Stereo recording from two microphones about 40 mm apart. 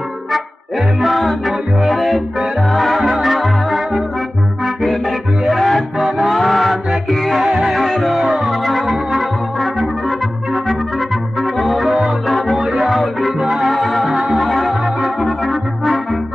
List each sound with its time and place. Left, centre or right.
1.0 s music: centre
5.5 s music: centre
12.5 s music: centre
13.4 s music: centre
13.7 s music: centre
14.1 s music: centre
14.4 s organ: centre